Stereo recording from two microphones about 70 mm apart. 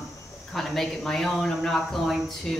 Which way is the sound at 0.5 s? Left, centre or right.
Centre.